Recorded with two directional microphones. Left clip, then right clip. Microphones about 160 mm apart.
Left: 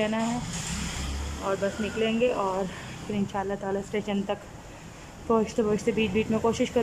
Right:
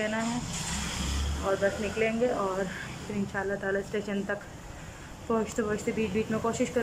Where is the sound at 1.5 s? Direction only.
15° left (ahead or behind).